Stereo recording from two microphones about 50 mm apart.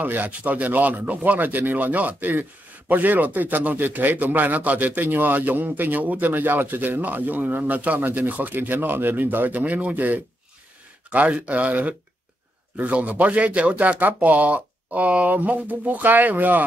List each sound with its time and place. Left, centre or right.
0.0 s speech: right